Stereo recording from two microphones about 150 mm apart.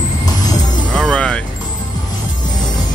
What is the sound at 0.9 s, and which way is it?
Music, 5° left (ahead or behind).